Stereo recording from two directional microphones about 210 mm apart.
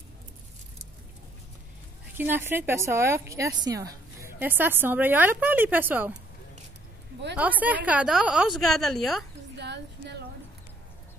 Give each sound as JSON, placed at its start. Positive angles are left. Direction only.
{"t": 2.1, "sound": "a woman's voice", "side_deg": -10}
{"t": 7.3, "sound": "a woman's voice", "side_deg": -5}
{"t": 9.6, "sound": "a sound", "side_deg": -55}